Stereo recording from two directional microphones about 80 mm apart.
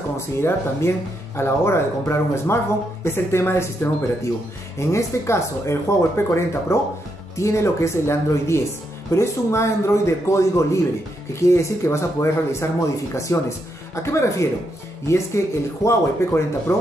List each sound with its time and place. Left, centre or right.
0.4 s speech: left